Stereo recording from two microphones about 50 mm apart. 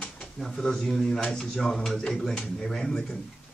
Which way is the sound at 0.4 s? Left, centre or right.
Centre.